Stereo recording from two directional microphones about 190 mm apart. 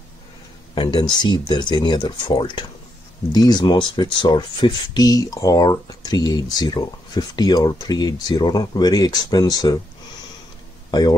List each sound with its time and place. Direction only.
0.7 s speech: 25° left (ahead or behind)
10.9 s speech: 20° left (ahead or behind)